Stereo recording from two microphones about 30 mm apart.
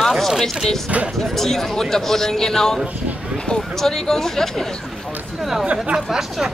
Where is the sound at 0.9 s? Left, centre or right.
Right.